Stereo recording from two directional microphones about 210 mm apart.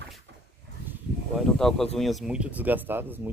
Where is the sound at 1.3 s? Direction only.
Centre (ahead or behind).